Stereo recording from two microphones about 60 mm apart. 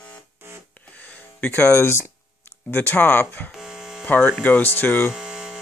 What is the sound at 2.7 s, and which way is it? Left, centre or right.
Speech, left.